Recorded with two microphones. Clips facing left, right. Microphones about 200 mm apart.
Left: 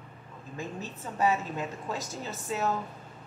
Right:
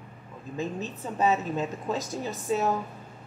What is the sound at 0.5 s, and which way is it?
A woman's voice, 20° right (ahead or behind).